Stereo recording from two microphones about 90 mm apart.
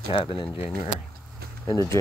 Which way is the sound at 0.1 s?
70° left (ahead or behind).